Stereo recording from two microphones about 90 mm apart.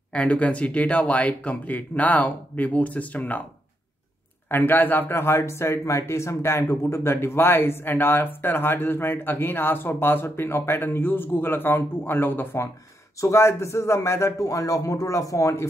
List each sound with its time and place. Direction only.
0.1 s speech: 15° left (ahead or behind)
4.5 s a man's voice: 25° left (ahead or behind)